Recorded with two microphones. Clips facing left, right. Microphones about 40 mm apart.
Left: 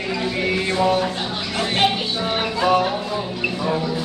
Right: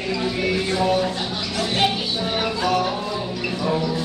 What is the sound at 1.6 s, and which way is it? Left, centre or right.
Speech, left.